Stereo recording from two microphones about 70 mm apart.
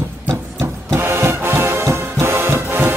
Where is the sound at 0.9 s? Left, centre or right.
Right.